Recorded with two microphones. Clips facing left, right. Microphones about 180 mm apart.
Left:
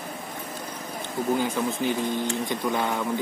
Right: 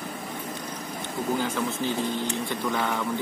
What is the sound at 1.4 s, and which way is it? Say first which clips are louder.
Speech: left 2 dB; 15° left (ahead or behind).